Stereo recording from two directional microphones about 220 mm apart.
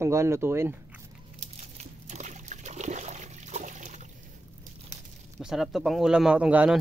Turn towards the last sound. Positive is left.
turn(degrees=-5)  # may be behind; listen again after turning